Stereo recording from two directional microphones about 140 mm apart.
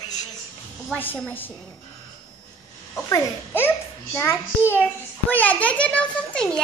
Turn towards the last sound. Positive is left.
turn(degrees=5)  # may be behind; listen again after turning